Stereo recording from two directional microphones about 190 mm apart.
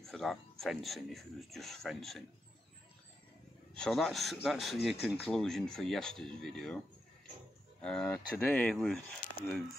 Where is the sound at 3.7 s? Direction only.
5° left (ahead or behind).